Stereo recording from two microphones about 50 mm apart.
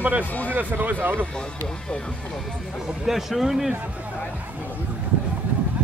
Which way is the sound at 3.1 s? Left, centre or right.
Centre.